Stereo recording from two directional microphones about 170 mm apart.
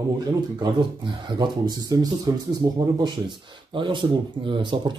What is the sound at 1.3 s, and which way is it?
Speech, 25° right (ahead or behind).